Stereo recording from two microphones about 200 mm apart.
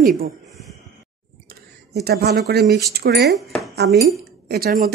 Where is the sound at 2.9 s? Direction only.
55° right (ahead or behind).